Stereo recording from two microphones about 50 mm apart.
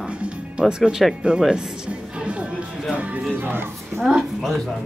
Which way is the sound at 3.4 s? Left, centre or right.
Right.